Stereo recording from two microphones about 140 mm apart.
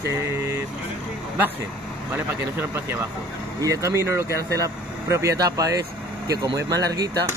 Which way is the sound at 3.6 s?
20° right (ahead or behind).